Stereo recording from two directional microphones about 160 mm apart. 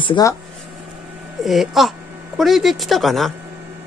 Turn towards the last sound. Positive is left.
turn(degrees=0)  # may be behind; listen again after turning